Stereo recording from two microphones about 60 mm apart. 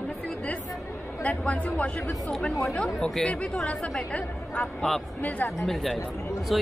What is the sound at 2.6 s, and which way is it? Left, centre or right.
Speech, centre.